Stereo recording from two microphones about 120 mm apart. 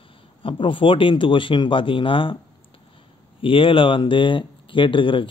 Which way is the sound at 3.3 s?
45° left (ahead or behind).